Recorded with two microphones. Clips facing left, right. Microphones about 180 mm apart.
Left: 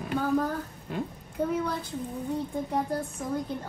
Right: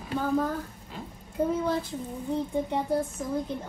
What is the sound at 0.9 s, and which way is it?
Speech, 60° left (ahead or behind).